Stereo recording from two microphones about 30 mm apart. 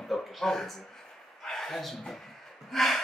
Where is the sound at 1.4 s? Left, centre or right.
Centre.